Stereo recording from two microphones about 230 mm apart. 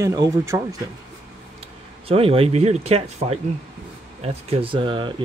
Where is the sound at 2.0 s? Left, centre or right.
Right.